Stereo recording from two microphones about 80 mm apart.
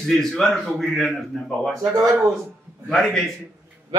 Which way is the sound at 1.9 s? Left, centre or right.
Right.